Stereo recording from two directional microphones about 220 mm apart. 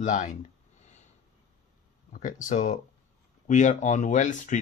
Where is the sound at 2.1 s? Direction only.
35° left (ahead or behind).